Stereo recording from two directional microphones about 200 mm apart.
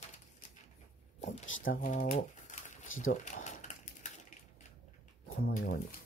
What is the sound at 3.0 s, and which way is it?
Typewriter, 40° left (ahead or behind).